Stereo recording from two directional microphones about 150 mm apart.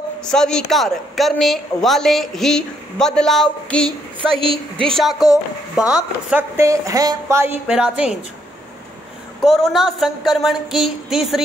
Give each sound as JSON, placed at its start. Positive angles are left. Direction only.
{"t": 0.2, "sound": "a woman's voice", "side_deg": 5}
{"t": 4.4, "sound": "a woman's voice", "side_deg": -35}
{"t": 4.8, "sound": "a woman's voice", "side_deg": 0}
{"t": 6.5, "sound": "a woman's voice", "side_deg": -20}
{"t": 9.4, "sound": "a woman's voice", "side_deg": 0}